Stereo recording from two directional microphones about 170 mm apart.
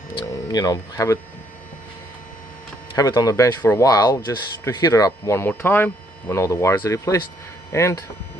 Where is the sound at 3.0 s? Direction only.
20° left (ahead or behind).